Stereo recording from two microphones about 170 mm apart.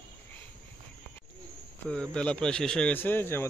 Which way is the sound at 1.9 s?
5° left (ahead or behind).